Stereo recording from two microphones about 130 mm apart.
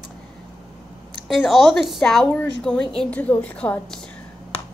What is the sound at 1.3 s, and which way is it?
A woman's voice, centre (ahead or behind).